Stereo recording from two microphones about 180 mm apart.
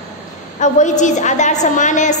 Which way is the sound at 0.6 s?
40° left (ahead or behind).